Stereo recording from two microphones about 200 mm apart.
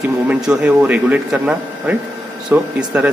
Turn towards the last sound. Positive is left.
turn(degrees=-5)  # may be behind; listen again after turning